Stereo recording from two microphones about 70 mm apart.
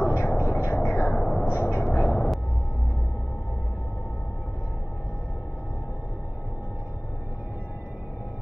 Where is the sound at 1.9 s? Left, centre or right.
Left.